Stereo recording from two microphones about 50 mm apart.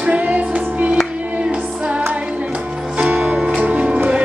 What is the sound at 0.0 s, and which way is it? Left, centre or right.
Music, right.